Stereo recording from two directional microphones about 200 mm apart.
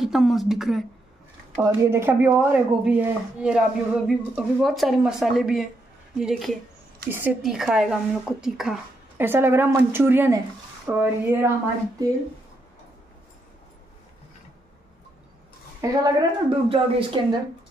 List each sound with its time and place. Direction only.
0.0 s speech: centre (ahead or behind)
1.6 s speech: 15° right (ahead or behind)
15.8 s a woman's voice: 20° right (ahead or behind)